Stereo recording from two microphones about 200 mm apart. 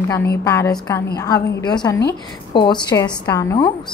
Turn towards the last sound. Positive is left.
turn(degrees=20)  # may be behind; listen again after turning